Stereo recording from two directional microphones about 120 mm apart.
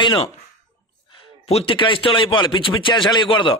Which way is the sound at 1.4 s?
55° left (ahead or behind).